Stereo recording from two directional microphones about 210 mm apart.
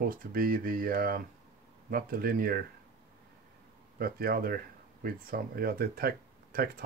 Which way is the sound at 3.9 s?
45° right (ahead or behind).